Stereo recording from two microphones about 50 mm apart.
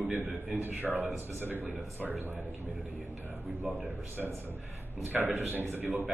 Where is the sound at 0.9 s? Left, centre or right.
Right.